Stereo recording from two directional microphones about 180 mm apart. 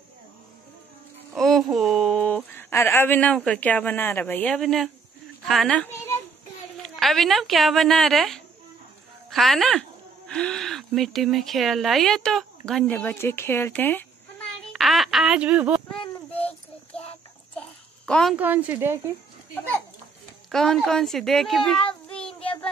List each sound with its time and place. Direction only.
1.3 s speech: centre (ahead or behind)
14.7 s speech: centre (ahead or behind)
16.0 s child singing: 35° left (ahead or behind)
17.6 s babbling: 5° left (ahead or behind)
18.3 s speech: 10° right (ahead or behind)
20.5 s speech: centre (ahead or behind)